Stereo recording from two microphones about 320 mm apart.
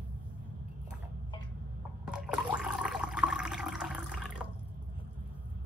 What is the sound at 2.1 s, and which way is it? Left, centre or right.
Water, centre.